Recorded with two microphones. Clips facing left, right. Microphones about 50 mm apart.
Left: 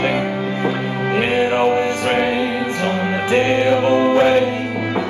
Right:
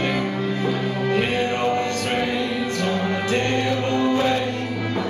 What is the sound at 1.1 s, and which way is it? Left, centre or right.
Music, left.